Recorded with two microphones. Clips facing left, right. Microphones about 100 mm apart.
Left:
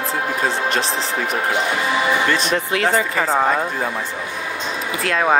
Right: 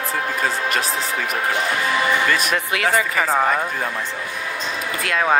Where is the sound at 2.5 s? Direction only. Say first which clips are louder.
Left 2 dB; 25° left (ahead or behind).